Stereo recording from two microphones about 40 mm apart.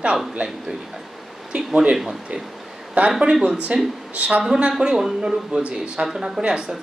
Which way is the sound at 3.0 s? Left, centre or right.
Right.